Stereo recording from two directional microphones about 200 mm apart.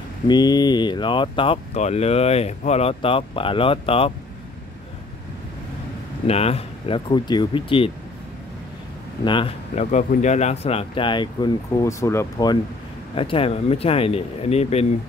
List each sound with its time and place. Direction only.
0.3 s speech: 20° left (ahead or behind)
6.2 s speech: 30° left (ahead or behind)
9.2 s speech: 25° left (ahead or behind)
13.1 s speech: 25° left (ahead or behind)